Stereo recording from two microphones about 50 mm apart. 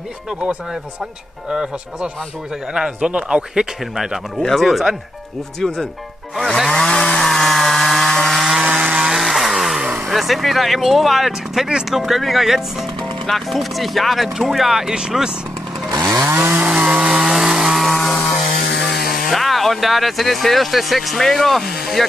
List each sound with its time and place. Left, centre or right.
0.3 s a man's voice: right
3.5 s speech: centre
4.4 s speech: centre
6.7 s chainsaw: centre
7.2 s chainsaw: centre
8.4 s chainsaw: centre
8.6 s chainsaw: right
8.9 s chainsaw: centre
10.0 s speech: centre
16.6 s chainsaw: right
17.1 s chainsaw: centre
17.9 s music: centre
18.3 s speech: centre